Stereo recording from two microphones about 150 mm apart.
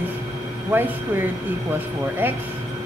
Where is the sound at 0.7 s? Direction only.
15° right (ahead or behind).